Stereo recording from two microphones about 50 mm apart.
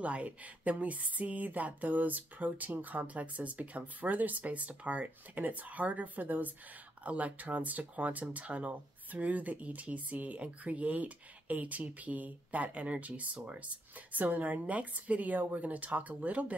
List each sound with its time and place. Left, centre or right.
0.0 s speech: right